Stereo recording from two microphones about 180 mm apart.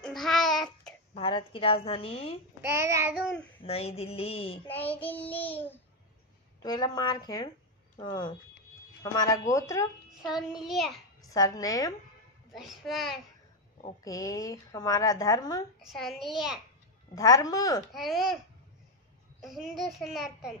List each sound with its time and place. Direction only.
0.0 s babbling: centre (ahead or behind)
1.1 s a woman's voice: 30° left (ahead or behind)
2.6 s child singing: 15° right (ahead or behind)
3.6 s a woman's voice: 35° left (ahead or behind)
4.6 s speech: 10° left (ahead or behind)
6.6 s speech: 25° left (ahead or behind)
10.2 s a child's voice: centre (ahead or behind)
11.2 s speech: 20° left (ahead or behind)
12.5 s a child's voice: centre (ahead or behind)
14.0 s speech: 20° left (ahead or behind)
15.8 s a child's voice: centre (ahead or behind)
17.1 s speech: 20° left (ahead or behind)
17.9 s a child's voice: centre (ahead or behind)
19.4 s a child's voice: centre (ahead or behind)